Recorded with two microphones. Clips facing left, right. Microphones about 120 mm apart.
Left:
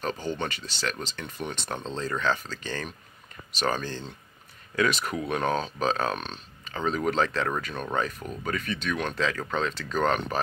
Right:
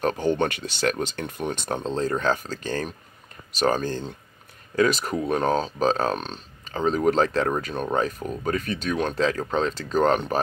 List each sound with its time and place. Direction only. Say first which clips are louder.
0.0 s speech: right 8 dB; 55° right (ahead or behind); by 10.4 s 40° right (ahead or behind)